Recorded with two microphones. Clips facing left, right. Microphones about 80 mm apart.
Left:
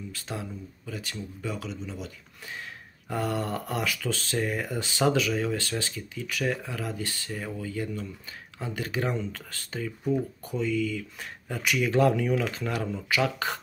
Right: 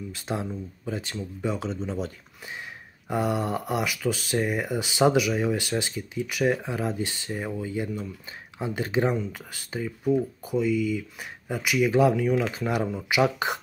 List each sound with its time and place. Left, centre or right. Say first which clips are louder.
0.1 s speech: right 8 dB; right
1.7 s speech: right 7 dB; right
3.1 s speech: right 3 dB; centre
9.1 s speech: right 3 dB; centre
10.0 s speech: right 4 dB; centre